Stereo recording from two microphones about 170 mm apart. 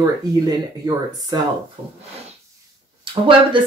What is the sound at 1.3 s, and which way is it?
Speech, 25° right (ahead or behind).